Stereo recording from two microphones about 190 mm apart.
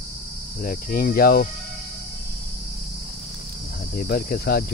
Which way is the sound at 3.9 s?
50° left (ahead or behind).